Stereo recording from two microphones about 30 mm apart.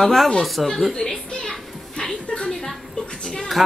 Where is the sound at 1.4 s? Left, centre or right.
Centre.